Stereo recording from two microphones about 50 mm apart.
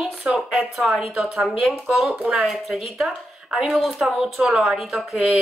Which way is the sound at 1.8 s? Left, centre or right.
Right.